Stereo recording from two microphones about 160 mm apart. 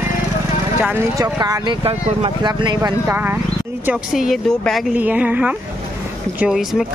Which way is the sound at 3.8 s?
Centre (ahead or behind).